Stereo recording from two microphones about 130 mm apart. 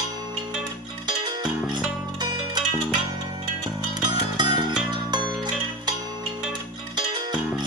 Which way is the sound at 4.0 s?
35° right (ahead or behind).